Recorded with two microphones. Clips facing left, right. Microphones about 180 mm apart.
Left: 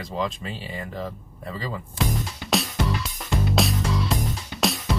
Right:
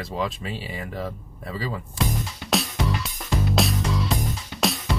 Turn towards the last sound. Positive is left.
turn(degrees=0)  # may be behind; listen again after turning